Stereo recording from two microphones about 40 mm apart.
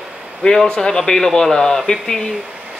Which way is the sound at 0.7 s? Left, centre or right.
Centre.